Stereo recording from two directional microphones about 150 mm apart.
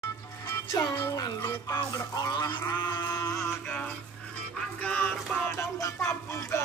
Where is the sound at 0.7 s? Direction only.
20° left (ahead or behind).